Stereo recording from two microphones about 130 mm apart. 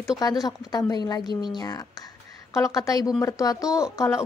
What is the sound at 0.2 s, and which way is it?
A woman's voice, 30° left (ahead or behind).